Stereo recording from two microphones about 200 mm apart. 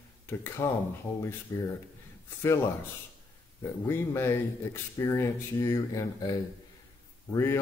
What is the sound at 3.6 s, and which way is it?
Speech, 10° left (ahead or behind).